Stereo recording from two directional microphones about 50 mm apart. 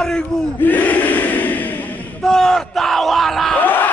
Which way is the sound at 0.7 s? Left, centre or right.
Left.